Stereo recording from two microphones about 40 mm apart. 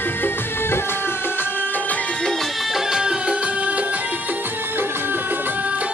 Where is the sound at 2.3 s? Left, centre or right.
Centre.